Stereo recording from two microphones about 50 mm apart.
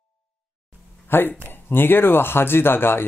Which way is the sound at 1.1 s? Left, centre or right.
Left.